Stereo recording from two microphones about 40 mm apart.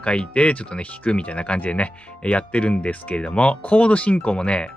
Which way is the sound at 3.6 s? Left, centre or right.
Left.